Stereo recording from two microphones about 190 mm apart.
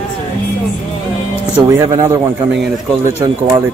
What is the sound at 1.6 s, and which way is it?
Speech, 20° right (ahead or behind).